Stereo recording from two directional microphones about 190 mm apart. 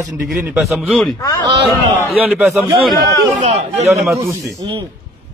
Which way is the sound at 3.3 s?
35° right (ahead or behind).